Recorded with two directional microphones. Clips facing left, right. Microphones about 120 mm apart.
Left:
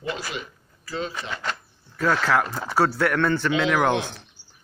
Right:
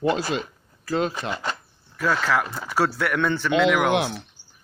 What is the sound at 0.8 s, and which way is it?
Speech, 50° right (ahead or behind).